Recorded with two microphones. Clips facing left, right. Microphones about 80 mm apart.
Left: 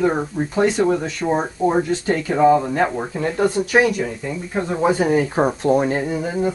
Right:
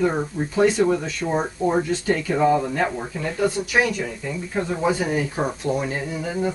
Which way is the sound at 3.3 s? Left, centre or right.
Left.